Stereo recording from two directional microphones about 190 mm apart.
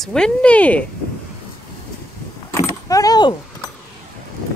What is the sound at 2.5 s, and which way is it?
Keys jangling, 15° left (ahead or behind).